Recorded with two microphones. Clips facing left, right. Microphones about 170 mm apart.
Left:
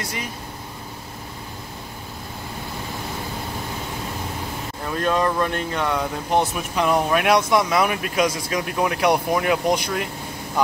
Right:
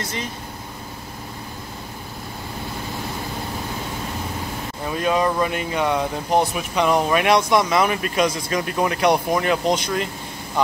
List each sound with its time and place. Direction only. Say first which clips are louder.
4.8 s speech: right 1 dB; 10° right (ahead or behind)
6.3 s speech: right 1 dB; centre (ahead or behind)